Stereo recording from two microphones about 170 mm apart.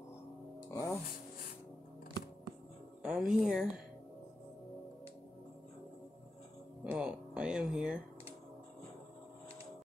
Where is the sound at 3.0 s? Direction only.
5° right (ahead or behind).